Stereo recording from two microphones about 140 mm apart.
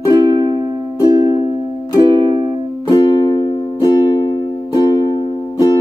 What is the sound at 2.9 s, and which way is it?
Music, 30° left (ahead or behind).